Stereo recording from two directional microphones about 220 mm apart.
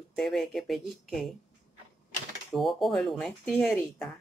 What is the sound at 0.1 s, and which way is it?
A woman's voice, centre (ahead or behind).